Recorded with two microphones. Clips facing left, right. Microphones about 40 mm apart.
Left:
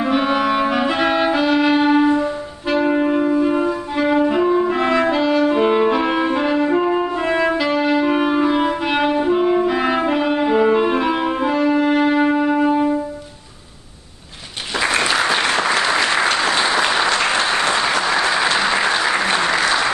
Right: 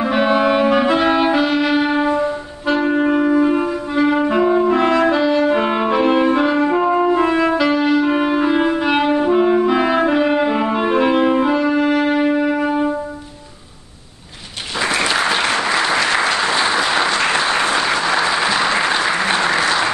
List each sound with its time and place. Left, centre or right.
0.0 s clarinet: centre
1.9 s music: centre
3.4 s clarinet: centre
4.3 s music: centre
16.2 s applause: centre
18.0 s applause: right
18.3 s applause: centre